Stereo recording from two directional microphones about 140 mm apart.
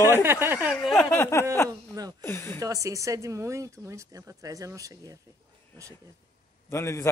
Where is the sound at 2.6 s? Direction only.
25° right (ahead or behind).